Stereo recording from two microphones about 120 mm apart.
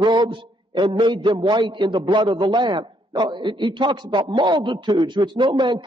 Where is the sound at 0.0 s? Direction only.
40° right (ahead or behind).